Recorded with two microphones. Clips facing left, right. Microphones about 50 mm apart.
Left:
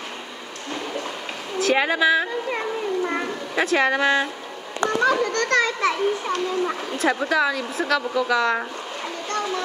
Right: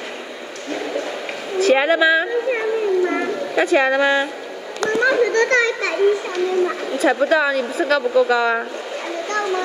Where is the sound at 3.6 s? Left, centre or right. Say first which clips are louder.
Right 3 dB; right.